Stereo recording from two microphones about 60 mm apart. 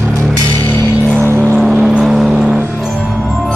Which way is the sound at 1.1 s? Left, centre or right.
Right.